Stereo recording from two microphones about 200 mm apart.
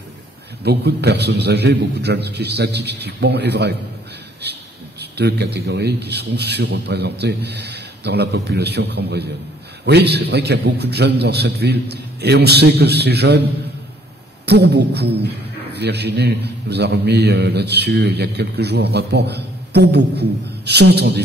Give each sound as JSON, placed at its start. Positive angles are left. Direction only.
{"t": 0.7, "sound": "a man's voice", "side_deg": -55}
{"t": 5.1, "sound": "a man's voice", "side_deg": -55}
{"t": 14.4, "sound": "a man's voice", "side_deg": -55}